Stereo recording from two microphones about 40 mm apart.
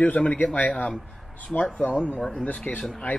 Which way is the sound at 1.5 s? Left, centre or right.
Centre.